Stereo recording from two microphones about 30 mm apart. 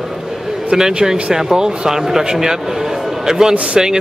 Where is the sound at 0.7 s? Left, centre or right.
Right.